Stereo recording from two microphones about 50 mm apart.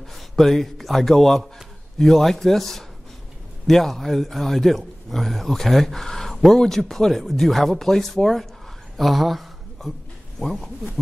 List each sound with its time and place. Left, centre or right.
0.1 s a man's voice: centre
8.9 s a sound: centre
10.4 s a man's voice: centre